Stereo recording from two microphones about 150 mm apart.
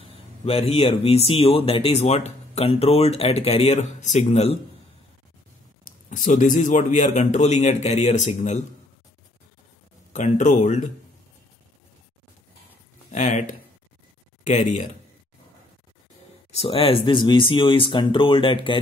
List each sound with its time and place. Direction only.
0.0 s speech: 40° left (ahead or behind)
5.9 s speech: 60° left (ahead or behind)
10.1 s speech: 55° left (ahead or behind)
13.1 s speech: 55° left (ahead or behind)
16.5 s speech: 40° left (ahead or behind)